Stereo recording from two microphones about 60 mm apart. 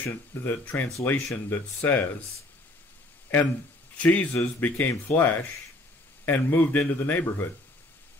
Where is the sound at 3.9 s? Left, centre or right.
Left.